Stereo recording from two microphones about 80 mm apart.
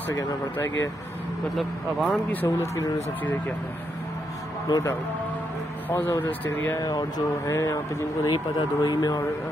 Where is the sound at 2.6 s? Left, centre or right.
Left.